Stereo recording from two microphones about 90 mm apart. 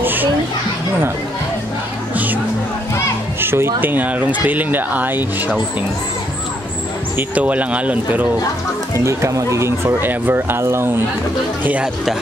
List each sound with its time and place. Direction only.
0.0 s children playing: 20° right (ahead or behind)
2.1 s music: 20° right (ahead or behind)
3.3 s speech: 25° right (ahead or behind)
7.2 s speech: 15° right (ahead or behind)
8.9 s speech: 35° right (ahead or behind)
11.8 s speech: 5° right (ahead or behind)